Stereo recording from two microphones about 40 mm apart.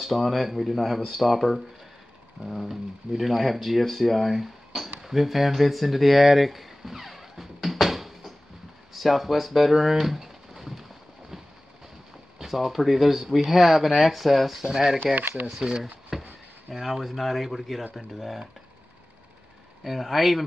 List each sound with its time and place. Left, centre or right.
0.0 s speech: centre
2.7 s speech: centre
8.9 s a sound: centre
12.4 s speech: centre
15.1 s speech: right
15.4 s speech: centre
15.8 s a sound: centre
16.8 s speech: centre
19.8 s speech: centre